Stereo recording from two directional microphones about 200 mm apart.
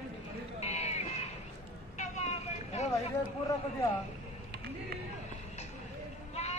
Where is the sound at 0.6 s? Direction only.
30° left (ahead or behind).